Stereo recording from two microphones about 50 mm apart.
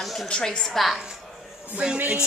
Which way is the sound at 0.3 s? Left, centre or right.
Centre.